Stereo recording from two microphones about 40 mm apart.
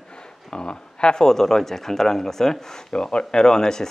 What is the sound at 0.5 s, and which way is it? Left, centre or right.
Speech, left.